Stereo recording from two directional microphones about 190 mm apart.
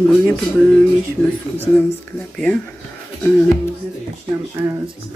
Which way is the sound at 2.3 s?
5° left (ahead or behind).